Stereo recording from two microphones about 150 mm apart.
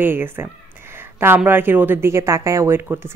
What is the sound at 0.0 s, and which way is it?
Speech, 15° right (ahead or behind).